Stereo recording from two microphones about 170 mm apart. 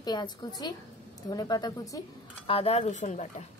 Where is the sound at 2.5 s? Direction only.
35° left (ahead or behind).